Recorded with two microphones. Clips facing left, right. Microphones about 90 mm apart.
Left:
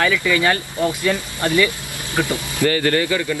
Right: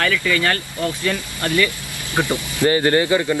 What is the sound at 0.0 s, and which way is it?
Speech, 20° left (ahead or behind).